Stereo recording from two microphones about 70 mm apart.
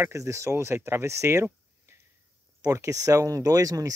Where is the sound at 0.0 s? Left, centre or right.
Right.